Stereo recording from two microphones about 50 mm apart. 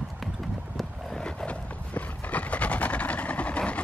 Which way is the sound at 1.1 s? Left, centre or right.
Centre.